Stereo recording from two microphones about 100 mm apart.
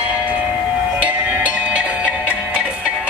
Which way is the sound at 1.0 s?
15° right (ahead or behind).